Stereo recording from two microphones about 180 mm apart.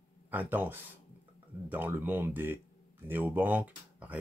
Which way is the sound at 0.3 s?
10° right (ahead or behind).